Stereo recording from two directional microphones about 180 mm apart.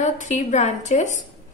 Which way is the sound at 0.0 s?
40° left (ahead or behind).